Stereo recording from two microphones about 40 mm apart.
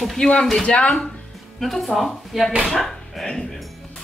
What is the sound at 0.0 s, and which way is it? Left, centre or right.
Speech, centre.